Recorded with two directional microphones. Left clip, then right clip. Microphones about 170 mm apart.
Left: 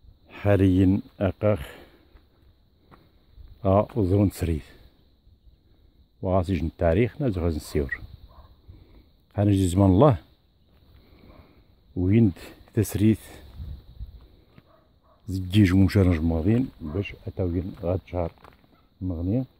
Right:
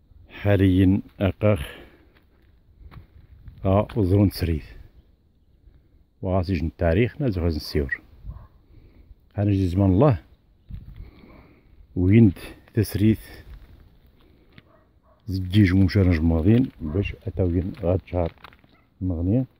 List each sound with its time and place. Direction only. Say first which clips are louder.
0.3 s speech: even; centre (ahead or behind)
1.2 s a sound: right 1 dB; 20° right (ahead or behind)
3.6 s speech: left 1 dB; centre (ahead or behind)
4.0 s speech: right 2 dB; 15° right (ahead or behind)
6.2 s speech: left 1 dB; centre (ahead or behind)
9.3 s speech: left 1 dB; 10° left (ahead or behind)
11.9 s speech: right 4 dB; 20° right (ahead or behind)
12.6 s speech: right 1 dB; 5° right (ahead or behind)
14.6 s bow-wow: right 5 dB; 15° left (ahead or behind)
15.2 s speech: right 1 dB; 5° right (ahead or behind)
16.3 s speech: right 4 dB; 20° right (ahead or behind)
18.3 s speech: right 4 dB; 5° right (ahead or behind)
19.0 s speech: right 3 dB; 25° right (ahead or behind)